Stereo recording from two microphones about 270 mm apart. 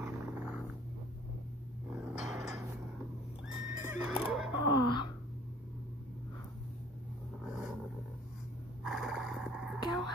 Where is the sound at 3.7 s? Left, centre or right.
Centre.